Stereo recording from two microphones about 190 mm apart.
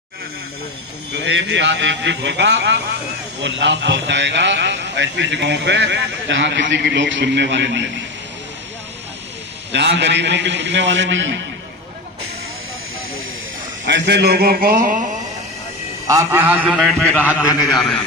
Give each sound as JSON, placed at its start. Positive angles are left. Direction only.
{"t": 1.1, "sound": "a man's voice", "side_deg": -70}
{"t": 9.7, "sound": "a man's voice", "side_deg": -65}
{"t": 13.8, "sound": "a man's voice", "side_deg": -65}
{"t": 16.2, "sound": "a man's voice", "side_deg": -10}
{"t": 17.6, "sound": "a man's voice", "side_deg": 20}